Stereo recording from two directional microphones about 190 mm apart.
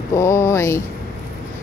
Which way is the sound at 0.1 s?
15° left (ahead or behind).